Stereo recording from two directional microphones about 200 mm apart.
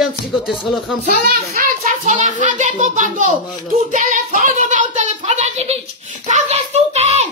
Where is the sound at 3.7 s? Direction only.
40° right (ahead or behind).